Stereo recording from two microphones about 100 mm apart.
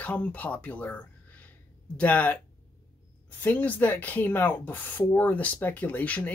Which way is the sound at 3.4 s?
15° left (ahead or behind).